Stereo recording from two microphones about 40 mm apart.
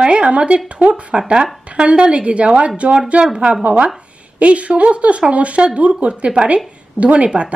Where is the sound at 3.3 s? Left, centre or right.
Right.